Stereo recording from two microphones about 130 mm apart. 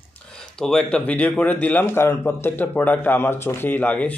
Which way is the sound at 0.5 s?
5° left (ahead or behind).